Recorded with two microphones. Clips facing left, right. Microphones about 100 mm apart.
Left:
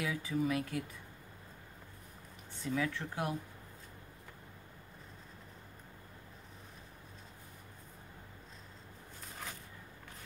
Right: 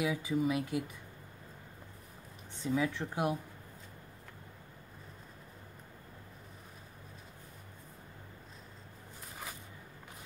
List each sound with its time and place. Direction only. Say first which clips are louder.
0.0 s speech: right 3 dB; 15° right (ahead or behind)
2.6 s speech: right 3 dB; 20° right (ahead or behind)